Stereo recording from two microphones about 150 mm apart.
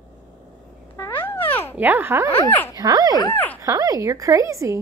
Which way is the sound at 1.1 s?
15° left (ahead or behind).